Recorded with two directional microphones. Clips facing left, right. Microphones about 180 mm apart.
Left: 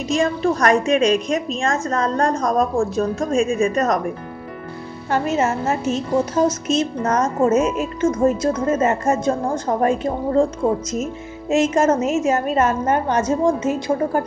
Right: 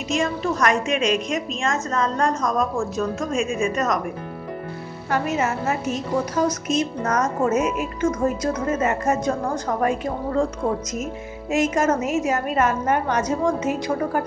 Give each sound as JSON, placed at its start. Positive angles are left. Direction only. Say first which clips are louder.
{"t": 0.1, "sound": "a woman's voice", "louder": "left 4 dB", "side_deg": 35}
{"t": 5.1, "sound": "a woman's voice", "louder": "left 3 dB", "side_deg": 25}